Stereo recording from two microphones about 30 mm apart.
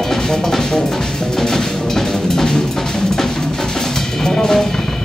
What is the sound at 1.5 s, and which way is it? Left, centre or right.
Music, centre.